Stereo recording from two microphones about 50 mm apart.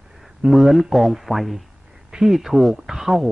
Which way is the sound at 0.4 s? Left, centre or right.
Centre.